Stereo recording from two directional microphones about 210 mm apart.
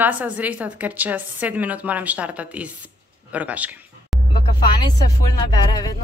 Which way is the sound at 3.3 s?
5° right (ahead or behind).